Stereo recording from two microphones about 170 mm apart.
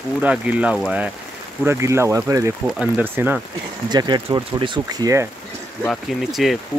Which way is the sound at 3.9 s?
25° right (ahead or behind).